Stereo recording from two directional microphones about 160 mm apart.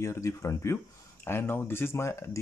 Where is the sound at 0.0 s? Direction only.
20° left (ahead or behind).